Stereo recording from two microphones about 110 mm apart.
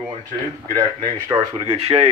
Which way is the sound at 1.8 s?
60° right (ahead or behind).